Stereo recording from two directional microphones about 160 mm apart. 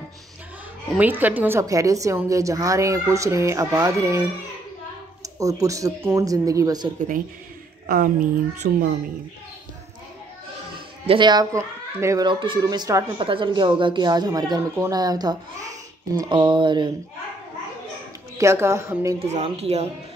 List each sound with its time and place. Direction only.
0.9 s a woman's voice: 10° right (ahead or behind)
7.8 s a woman's voice: 70° right (ahead or behind)
11.1 s a woman's voice: 30° right (ahead or behind)
12.3 s a woman's voice: 30° right (ahead or behind)
18.4 s speech: 15° right (ahead or behind)
19.1 s speech: 40° right (ahead or behind)